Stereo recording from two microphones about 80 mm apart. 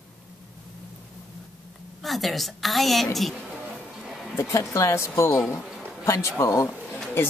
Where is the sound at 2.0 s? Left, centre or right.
Centre.